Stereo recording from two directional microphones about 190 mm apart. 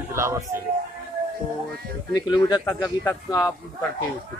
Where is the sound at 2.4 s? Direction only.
20° left (ahead or behind).